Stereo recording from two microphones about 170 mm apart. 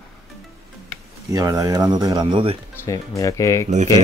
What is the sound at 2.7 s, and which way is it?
Speech, 20° left (ahead or behind).